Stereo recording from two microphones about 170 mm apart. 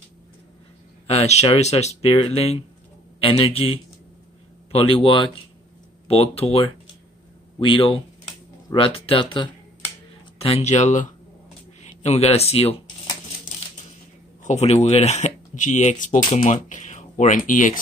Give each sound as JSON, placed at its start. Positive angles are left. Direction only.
{"t": 1.0, "sound": "speech", "side_deg": 40}
{"t": 11.8, "sound": "a sound", "side_deg": 40}
{"t": 14.4, "sound": "speech", "side_deg": 40}